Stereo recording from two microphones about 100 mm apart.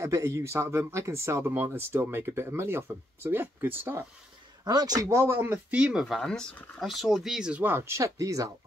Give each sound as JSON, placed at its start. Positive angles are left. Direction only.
{"t": 0.0, "sound": "speech", "side_deg": -30}
{"t": 4.6, "sound": "speech", "side_deg": -40}